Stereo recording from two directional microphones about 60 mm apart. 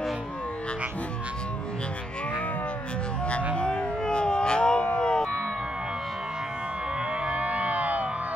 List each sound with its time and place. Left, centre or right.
3.5 s siren: centre
7.2 s music: right